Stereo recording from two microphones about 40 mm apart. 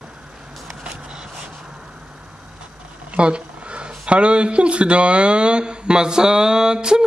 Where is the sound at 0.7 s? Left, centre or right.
Centre.